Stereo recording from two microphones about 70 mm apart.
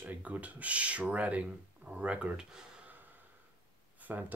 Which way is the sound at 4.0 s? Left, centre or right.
Right.